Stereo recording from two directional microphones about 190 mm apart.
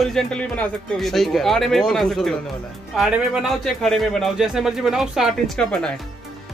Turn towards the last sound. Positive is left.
turn(degrees=5)  # may be behind; listen again after turning